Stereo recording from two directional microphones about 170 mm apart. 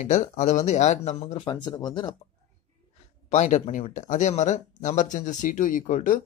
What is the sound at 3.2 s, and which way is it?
Speech, 45° left (ahead or behind).